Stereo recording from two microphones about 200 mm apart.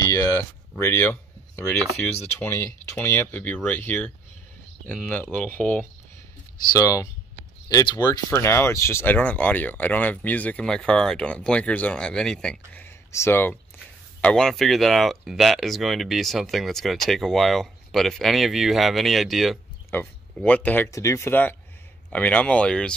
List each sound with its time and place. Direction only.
0.0 s a sound: 15° left (ahead or behind)
2.2 s speech: 10° left (ahead or behind)
5.1 s speech: 10° left (ahead or behind)